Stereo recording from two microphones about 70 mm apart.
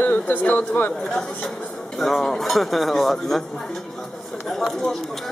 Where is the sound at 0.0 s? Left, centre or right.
Left.